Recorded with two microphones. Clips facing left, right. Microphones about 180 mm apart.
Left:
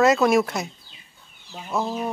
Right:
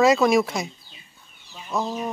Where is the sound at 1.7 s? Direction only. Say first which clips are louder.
Left 1 dB; 5° left (ahead or behind).